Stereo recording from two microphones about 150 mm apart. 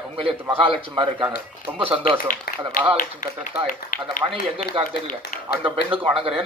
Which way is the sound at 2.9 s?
60° left (ahead or behind).